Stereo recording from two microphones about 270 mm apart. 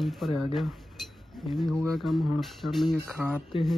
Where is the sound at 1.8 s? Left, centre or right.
Centre.